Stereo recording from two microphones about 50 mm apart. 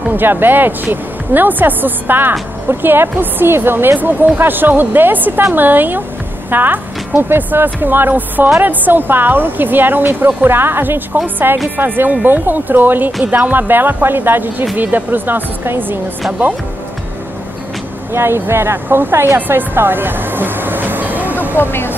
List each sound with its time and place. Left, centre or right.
0.1 s speech: right
18.1 s speech: right
21.5 s speech: left